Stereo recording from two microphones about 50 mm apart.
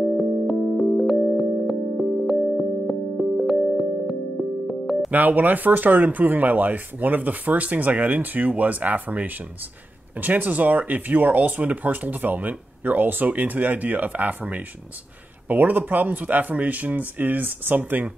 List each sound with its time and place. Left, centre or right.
0.2 s music: centre
5.1 s speech: right